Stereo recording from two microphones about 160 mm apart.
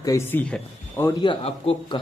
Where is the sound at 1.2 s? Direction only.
35° left (ahead or behind).